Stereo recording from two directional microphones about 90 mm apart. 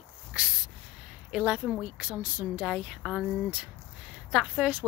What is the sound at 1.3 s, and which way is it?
Speech, 10° right (ahead or behind).